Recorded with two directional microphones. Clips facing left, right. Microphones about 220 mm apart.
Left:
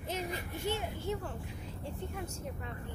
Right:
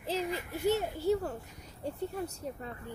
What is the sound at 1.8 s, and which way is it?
Speech, 40° right (ahead or behind).